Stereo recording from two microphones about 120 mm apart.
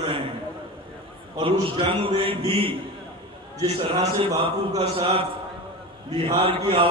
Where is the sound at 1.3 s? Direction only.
40° right (ahead or behind).